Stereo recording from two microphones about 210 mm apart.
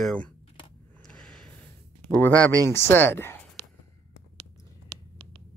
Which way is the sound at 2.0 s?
5° left (ahead or behind).